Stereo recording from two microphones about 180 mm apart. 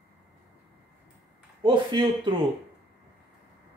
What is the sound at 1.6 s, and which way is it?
Speech, 25° right (ahead or behind).